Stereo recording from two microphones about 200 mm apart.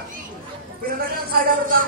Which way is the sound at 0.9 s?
45° right (ahead or behind).